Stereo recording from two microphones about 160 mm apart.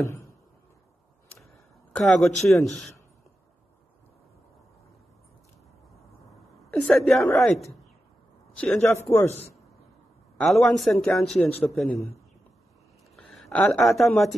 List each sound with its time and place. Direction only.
0.0 s a sound: 15° left (ahead or behind)
1.4 s a sound: 5° left (ahead or behind)
2.6 s a woman's voice: centre (ahead or behind)
6.7 s a woman's voice: 5° left (ahead or behind)
10.4 s a woman's voice: centre (ahead or behind)
13.1 s speech: centre (ahead or behind)